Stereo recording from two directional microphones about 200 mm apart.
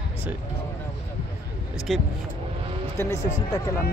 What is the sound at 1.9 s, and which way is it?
Speech, centre (ahead or behind).